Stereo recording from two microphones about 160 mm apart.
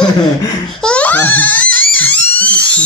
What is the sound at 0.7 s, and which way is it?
Baby laughter, 5° left (ahead or behind).